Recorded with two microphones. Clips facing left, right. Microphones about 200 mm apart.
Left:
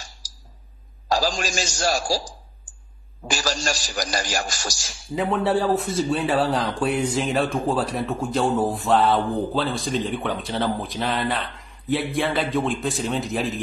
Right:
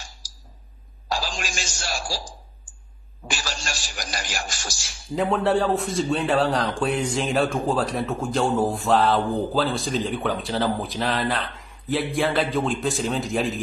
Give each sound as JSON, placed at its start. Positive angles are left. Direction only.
{"t": 1.1, "sound": "a man's voice", "side_deg": 40}
{"t": 5.1, "sound": "a man's voice", "side_deg": 0}